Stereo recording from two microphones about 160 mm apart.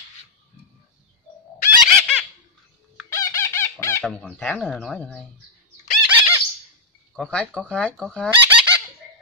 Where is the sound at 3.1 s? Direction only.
20° left (ahead or behind).